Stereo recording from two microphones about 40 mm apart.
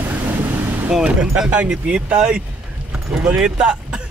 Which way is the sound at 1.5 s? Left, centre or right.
Right.